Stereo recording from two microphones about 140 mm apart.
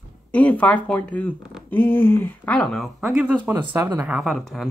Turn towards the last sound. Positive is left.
turn(degrees=0)  # may be behind; listen again after turning